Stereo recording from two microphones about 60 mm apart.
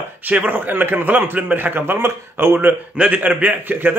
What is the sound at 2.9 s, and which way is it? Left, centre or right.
A man's voice, right.